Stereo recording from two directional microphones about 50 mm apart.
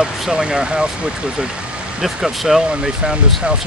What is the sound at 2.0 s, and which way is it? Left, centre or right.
Speech, centre.